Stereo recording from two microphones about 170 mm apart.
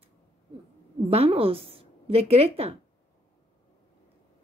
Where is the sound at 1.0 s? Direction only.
35° right (ahead or behind).